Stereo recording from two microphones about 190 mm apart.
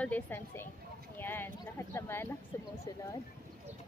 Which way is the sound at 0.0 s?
10° left (ahead or behind).